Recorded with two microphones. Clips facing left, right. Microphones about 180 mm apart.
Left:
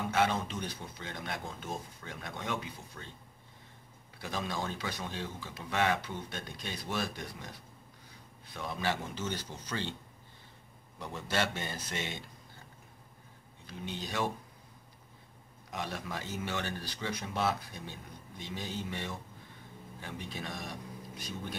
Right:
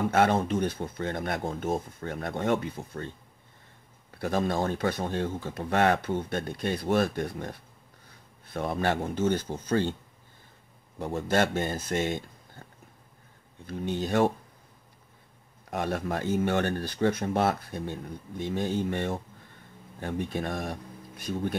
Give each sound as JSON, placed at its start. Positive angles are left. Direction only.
{"t": 0.1, "sound": "speech", "side_deg": -55}
{"t": 4.2, "sound": "speech", "side_deg": -55}
{"t": 11.0, "sound": "speech", "side_deg": -50}
{"t": 13.7, "sound": "speech", "side_deg": -50}
{"t": 15.7, "sound": "speech", "side_deg": -55}